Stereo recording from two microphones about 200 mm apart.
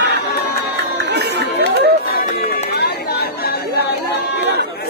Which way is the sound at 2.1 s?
50° left (ahead or behind).